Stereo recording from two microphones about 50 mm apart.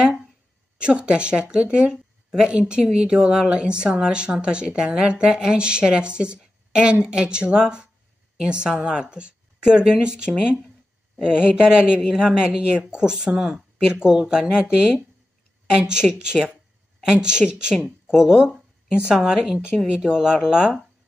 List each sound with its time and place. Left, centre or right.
0.7 s speech: right
15.9 s speech: centre